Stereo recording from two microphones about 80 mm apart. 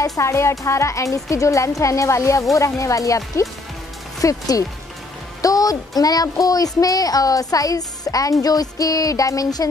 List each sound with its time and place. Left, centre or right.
0.0 s speech: left